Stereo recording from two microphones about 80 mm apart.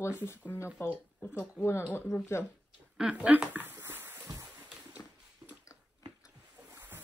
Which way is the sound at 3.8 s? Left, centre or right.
Right.